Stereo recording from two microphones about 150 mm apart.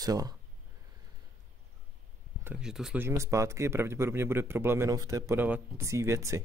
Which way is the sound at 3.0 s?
20° right (ahead or behind).